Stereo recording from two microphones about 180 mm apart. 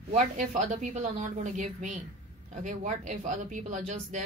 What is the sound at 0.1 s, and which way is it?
Speech, 45° right (ahead or behind).